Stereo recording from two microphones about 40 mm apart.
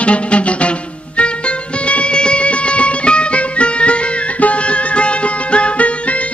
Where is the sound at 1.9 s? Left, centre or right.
Left.